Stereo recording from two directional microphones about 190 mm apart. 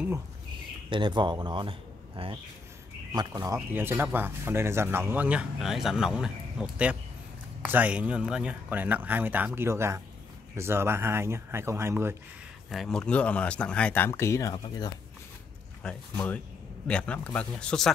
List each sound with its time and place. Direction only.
0.8 s speech: 25° right (ahead or behind)
12.6 s speech: centre (ahead or behind); by 14.9 s 20° left (ahead or behind)
15.8 s speech: 5° left (ahead or behind)